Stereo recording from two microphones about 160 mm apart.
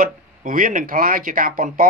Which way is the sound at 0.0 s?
60° right (ahead or behind).